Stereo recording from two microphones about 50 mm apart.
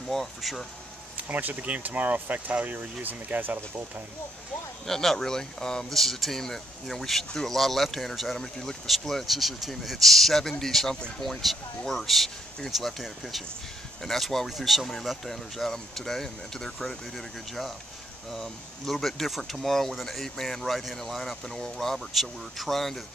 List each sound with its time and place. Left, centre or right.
0.1 s speech: centre
1.1 s speech: right
4.8 s speech: centre
8.4 s speech: centre